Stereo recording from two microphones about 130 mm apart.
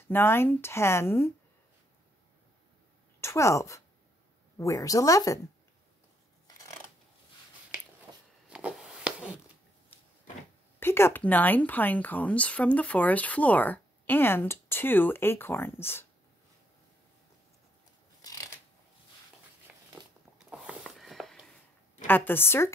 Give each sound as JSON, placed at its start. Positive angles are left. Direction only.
{"t": 0.1, "sound": "speech", "side_deg": 20}
{"t": 3.2, "sound": "a woman's voice", "side_deg": 20}
{"t": 8.5, "sound": "a sound", "side_deg": -5}
{"t": 10.8, "sound": "speech", "side_deg": 20}
{"t": 19.7, "sound": "a sound", "side_deg": -10}
{"t": 20.9, "sound": "walk", "side_deg": 0}
{"t": 22.0, "sound": "speech", "side_deg": 15}